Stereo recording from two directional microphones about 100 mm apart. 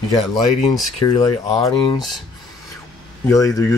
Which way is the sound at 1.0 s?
40° left (ahead or behind).